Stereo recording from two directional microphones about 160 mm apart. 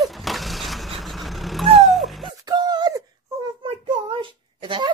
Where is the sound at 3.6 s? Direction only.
35° right (ahead or behind).